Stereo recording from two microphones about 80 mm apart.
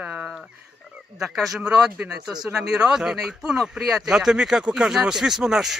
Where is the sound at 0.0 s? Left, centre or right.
Centre.